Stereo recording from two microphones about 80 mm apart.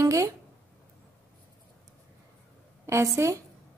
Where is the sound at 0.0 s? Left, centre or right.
Right.